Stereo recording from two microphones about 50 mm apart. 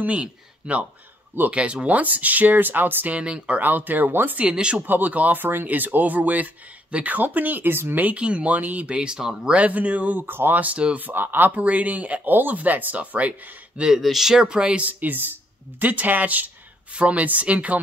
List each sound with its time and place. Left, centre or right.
0.0 s speech: right
3.1 s speech: right
3.6 s speech: right
4.4 s speech: centre
4.7 s speech: right
8.2 s speech: right
9.6 s speech: right
10.6 s speech: right
11.0 s speech: right
11.6 s speech: right
13.7 s speech: centre
14.8 s speech: right